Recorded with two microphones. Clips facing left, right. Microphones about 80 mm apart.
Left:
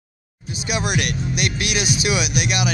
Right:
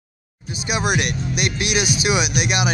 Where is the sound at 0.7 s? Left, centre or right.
Right.